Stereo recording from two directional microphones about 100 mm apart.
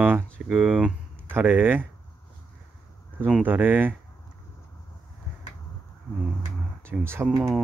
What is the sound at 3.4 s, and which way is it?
Speech, 20° right (ahead or behind).